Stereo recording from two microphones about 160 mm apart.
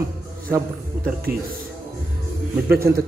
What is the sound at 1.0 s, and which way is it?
Speech, 70° right (ahead or behind).